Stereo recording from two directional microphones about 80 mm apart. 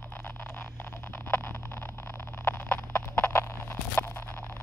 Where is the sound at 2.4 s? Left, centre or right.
Left.